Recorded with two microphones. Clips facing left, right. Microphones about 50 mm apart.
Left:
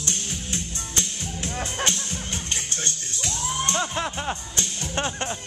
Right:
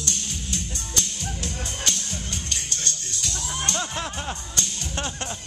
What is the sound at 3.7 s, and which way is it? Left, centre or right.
Music, centre.